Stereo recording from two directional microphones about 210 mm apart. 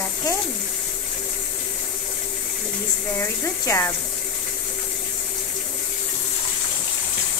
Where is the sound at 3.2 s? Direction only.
15° left (ahead or behind).